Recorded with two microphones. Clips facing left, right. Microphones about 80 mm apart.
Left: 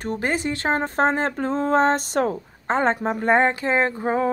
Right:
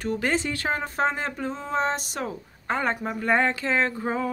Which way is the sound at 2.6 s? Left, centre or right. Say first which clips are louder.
Left 6 dB; left.